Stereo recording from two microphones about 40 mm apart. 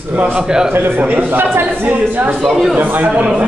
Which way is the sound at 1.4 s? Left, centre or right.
Right.